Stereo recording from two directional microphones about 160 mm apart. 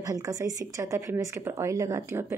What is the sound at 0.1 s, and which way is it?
Speech, 20° right (ahead or behind).